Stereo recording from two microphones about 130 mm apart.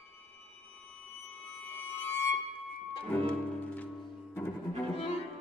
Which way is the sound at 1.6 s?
15° left (ahead or behind).